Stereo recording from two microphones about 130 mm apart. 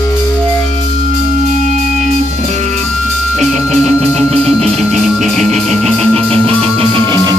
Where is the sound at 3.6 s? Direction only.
65° right (ahead or behind).